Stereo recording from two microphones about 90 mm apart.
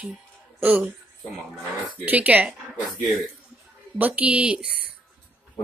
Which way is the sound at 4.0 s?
15° right (ahead or behind).